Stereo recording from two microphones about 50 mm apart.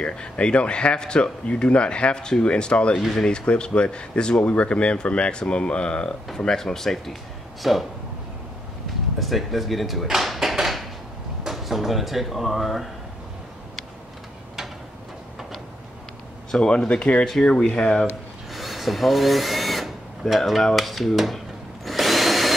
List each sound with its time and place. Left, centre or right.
0.0 s speech: centre
7.6 s speech: centre
9.2 s speech: centre
10.0 s a sound: centre
11.4 s speech: centre
16.5 s speech: centre
18.5 s speech: centre
21.8 s drill: centre